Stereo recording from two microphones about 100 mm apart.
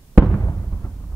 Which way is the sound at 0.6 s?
20° left (ahead or behind).